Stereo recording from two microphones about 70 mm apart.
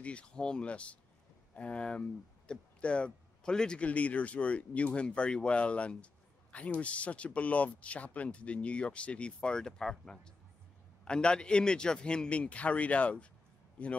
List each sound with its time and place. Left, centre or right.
0.0 s a man's voice: centre